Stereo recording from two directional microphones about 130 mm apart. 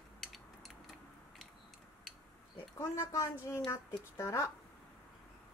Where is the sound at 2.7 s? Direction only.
25° left (ahead or behind).